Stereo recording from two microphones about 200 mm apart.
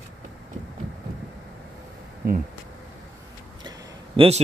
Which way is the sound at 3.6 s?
20° right (ahead or behind).